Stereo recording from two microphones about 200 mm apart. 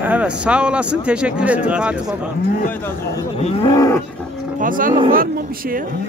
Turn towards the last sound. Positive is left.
turn(degrees=-45)  # may be behind; listen again after turning